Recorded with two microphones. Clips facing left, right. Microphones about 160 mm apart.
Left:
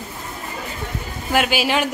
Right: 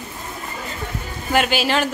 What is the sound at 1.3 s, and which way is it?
Speech, 5° left (ahead or behind).